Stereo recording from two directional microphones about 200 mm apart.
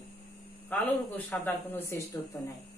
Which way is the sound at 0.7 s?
10° left (ahead or behind).